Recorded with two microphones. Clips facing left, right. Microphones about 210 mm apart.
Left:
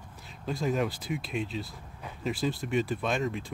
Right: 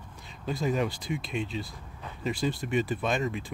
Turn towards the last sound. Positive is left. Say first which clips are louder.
# right 1 dB
turn(degrees=0)  # may be behind; listen again after turning